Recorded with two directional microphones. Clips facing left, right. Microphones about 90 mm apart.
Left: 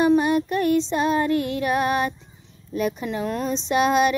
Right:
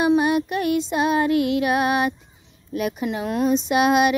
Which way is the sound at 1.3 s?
35° left (ahead or behind).